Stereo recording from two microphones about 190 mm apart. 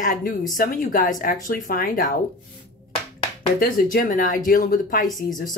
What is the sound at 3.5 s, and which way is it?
Speech, 45° left (ahead or behind).